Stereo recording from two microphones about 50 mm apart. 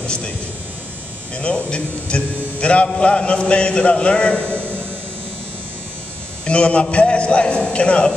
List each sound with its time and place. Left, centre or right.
0.0 s speech: centre
1.3 s a man's voice: left
4.4 s a sound: right
6.4 s a man's voice: left